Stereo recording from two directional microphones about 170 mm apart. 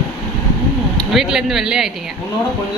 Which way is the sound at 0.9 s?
Centre (ahead or behind).